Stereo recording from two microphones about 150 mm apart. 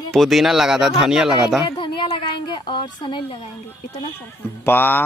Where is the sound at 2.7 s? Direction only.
30° left (ahead or behind).